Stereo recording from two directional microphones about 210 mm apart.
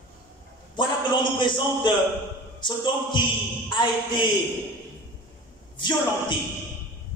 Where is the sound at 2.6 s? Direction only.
20° left (ahead or behind).